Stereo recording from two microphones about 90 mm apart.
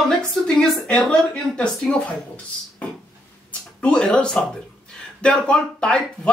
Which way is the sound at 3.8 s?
10° left (ahead or behind).